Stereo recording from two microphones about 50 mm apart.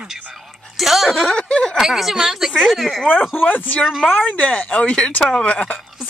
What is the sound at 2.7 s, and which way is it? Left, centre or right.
Speech, centre.